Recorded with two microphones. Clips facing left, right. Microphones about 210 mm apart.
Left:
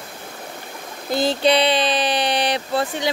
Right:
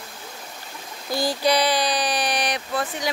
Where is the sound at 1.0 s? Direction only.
25° left (ahead or behind).